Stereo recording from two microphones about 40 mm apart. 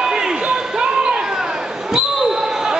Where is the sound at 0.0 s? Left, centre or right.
Centre.